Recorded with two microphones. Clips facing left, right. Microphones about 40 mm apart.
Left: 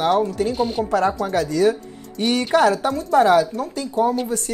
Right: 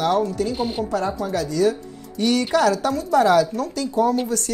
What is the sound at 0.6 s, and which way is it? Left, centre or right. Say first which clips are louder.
Speech: left 3 dB; centre.